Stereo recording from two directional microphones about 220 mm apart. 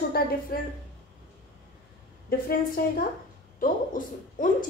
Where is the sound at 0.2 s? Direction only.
45° left (ahead or behind).